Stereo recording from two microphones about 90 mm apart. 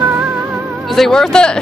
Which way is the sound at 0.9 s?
5° left (ahead or behind).